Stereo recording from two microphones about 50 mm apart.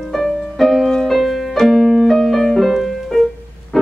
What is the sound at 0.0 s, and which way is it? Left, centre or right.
Music, centre.